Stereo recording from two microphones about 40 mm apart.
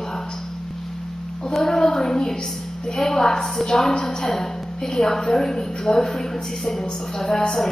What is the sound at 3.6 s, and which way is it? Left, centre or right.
A woman's voice, centre.